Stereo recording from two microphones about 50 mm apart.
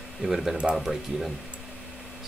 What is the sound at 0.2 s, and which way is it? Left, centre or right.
Speech, centre.